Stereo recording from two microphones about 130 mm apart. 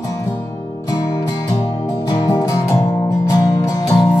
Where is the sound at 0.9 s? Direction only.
25° left (ahead or behind).